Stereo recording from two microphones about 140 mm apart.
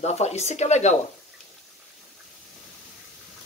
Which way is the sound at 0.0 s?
50° left (ahead or behind).